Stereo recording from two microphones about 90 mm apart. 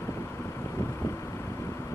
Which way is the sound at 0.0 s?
30° left (ahead or behind).